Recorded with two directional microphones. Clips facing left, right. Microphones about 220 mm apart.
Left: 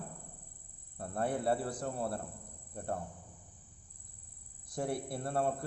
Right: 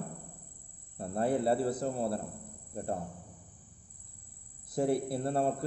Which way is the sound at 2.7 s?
25° right (ahead or behind).